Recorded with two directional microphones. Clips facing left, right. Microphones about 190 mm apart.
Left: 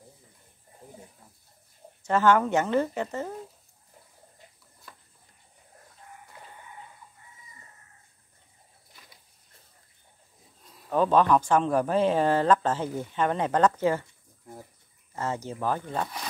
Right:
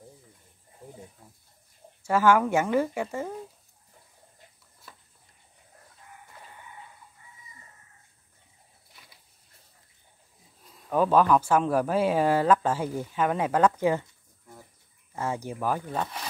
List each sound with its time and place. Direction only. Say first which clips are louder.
2.0 s speech: even; 10° right (ahead or behind)
10.7 s speech: even; 5° right (ahead or behind)
15.1 s speech: even; 10° right (ahead or behind)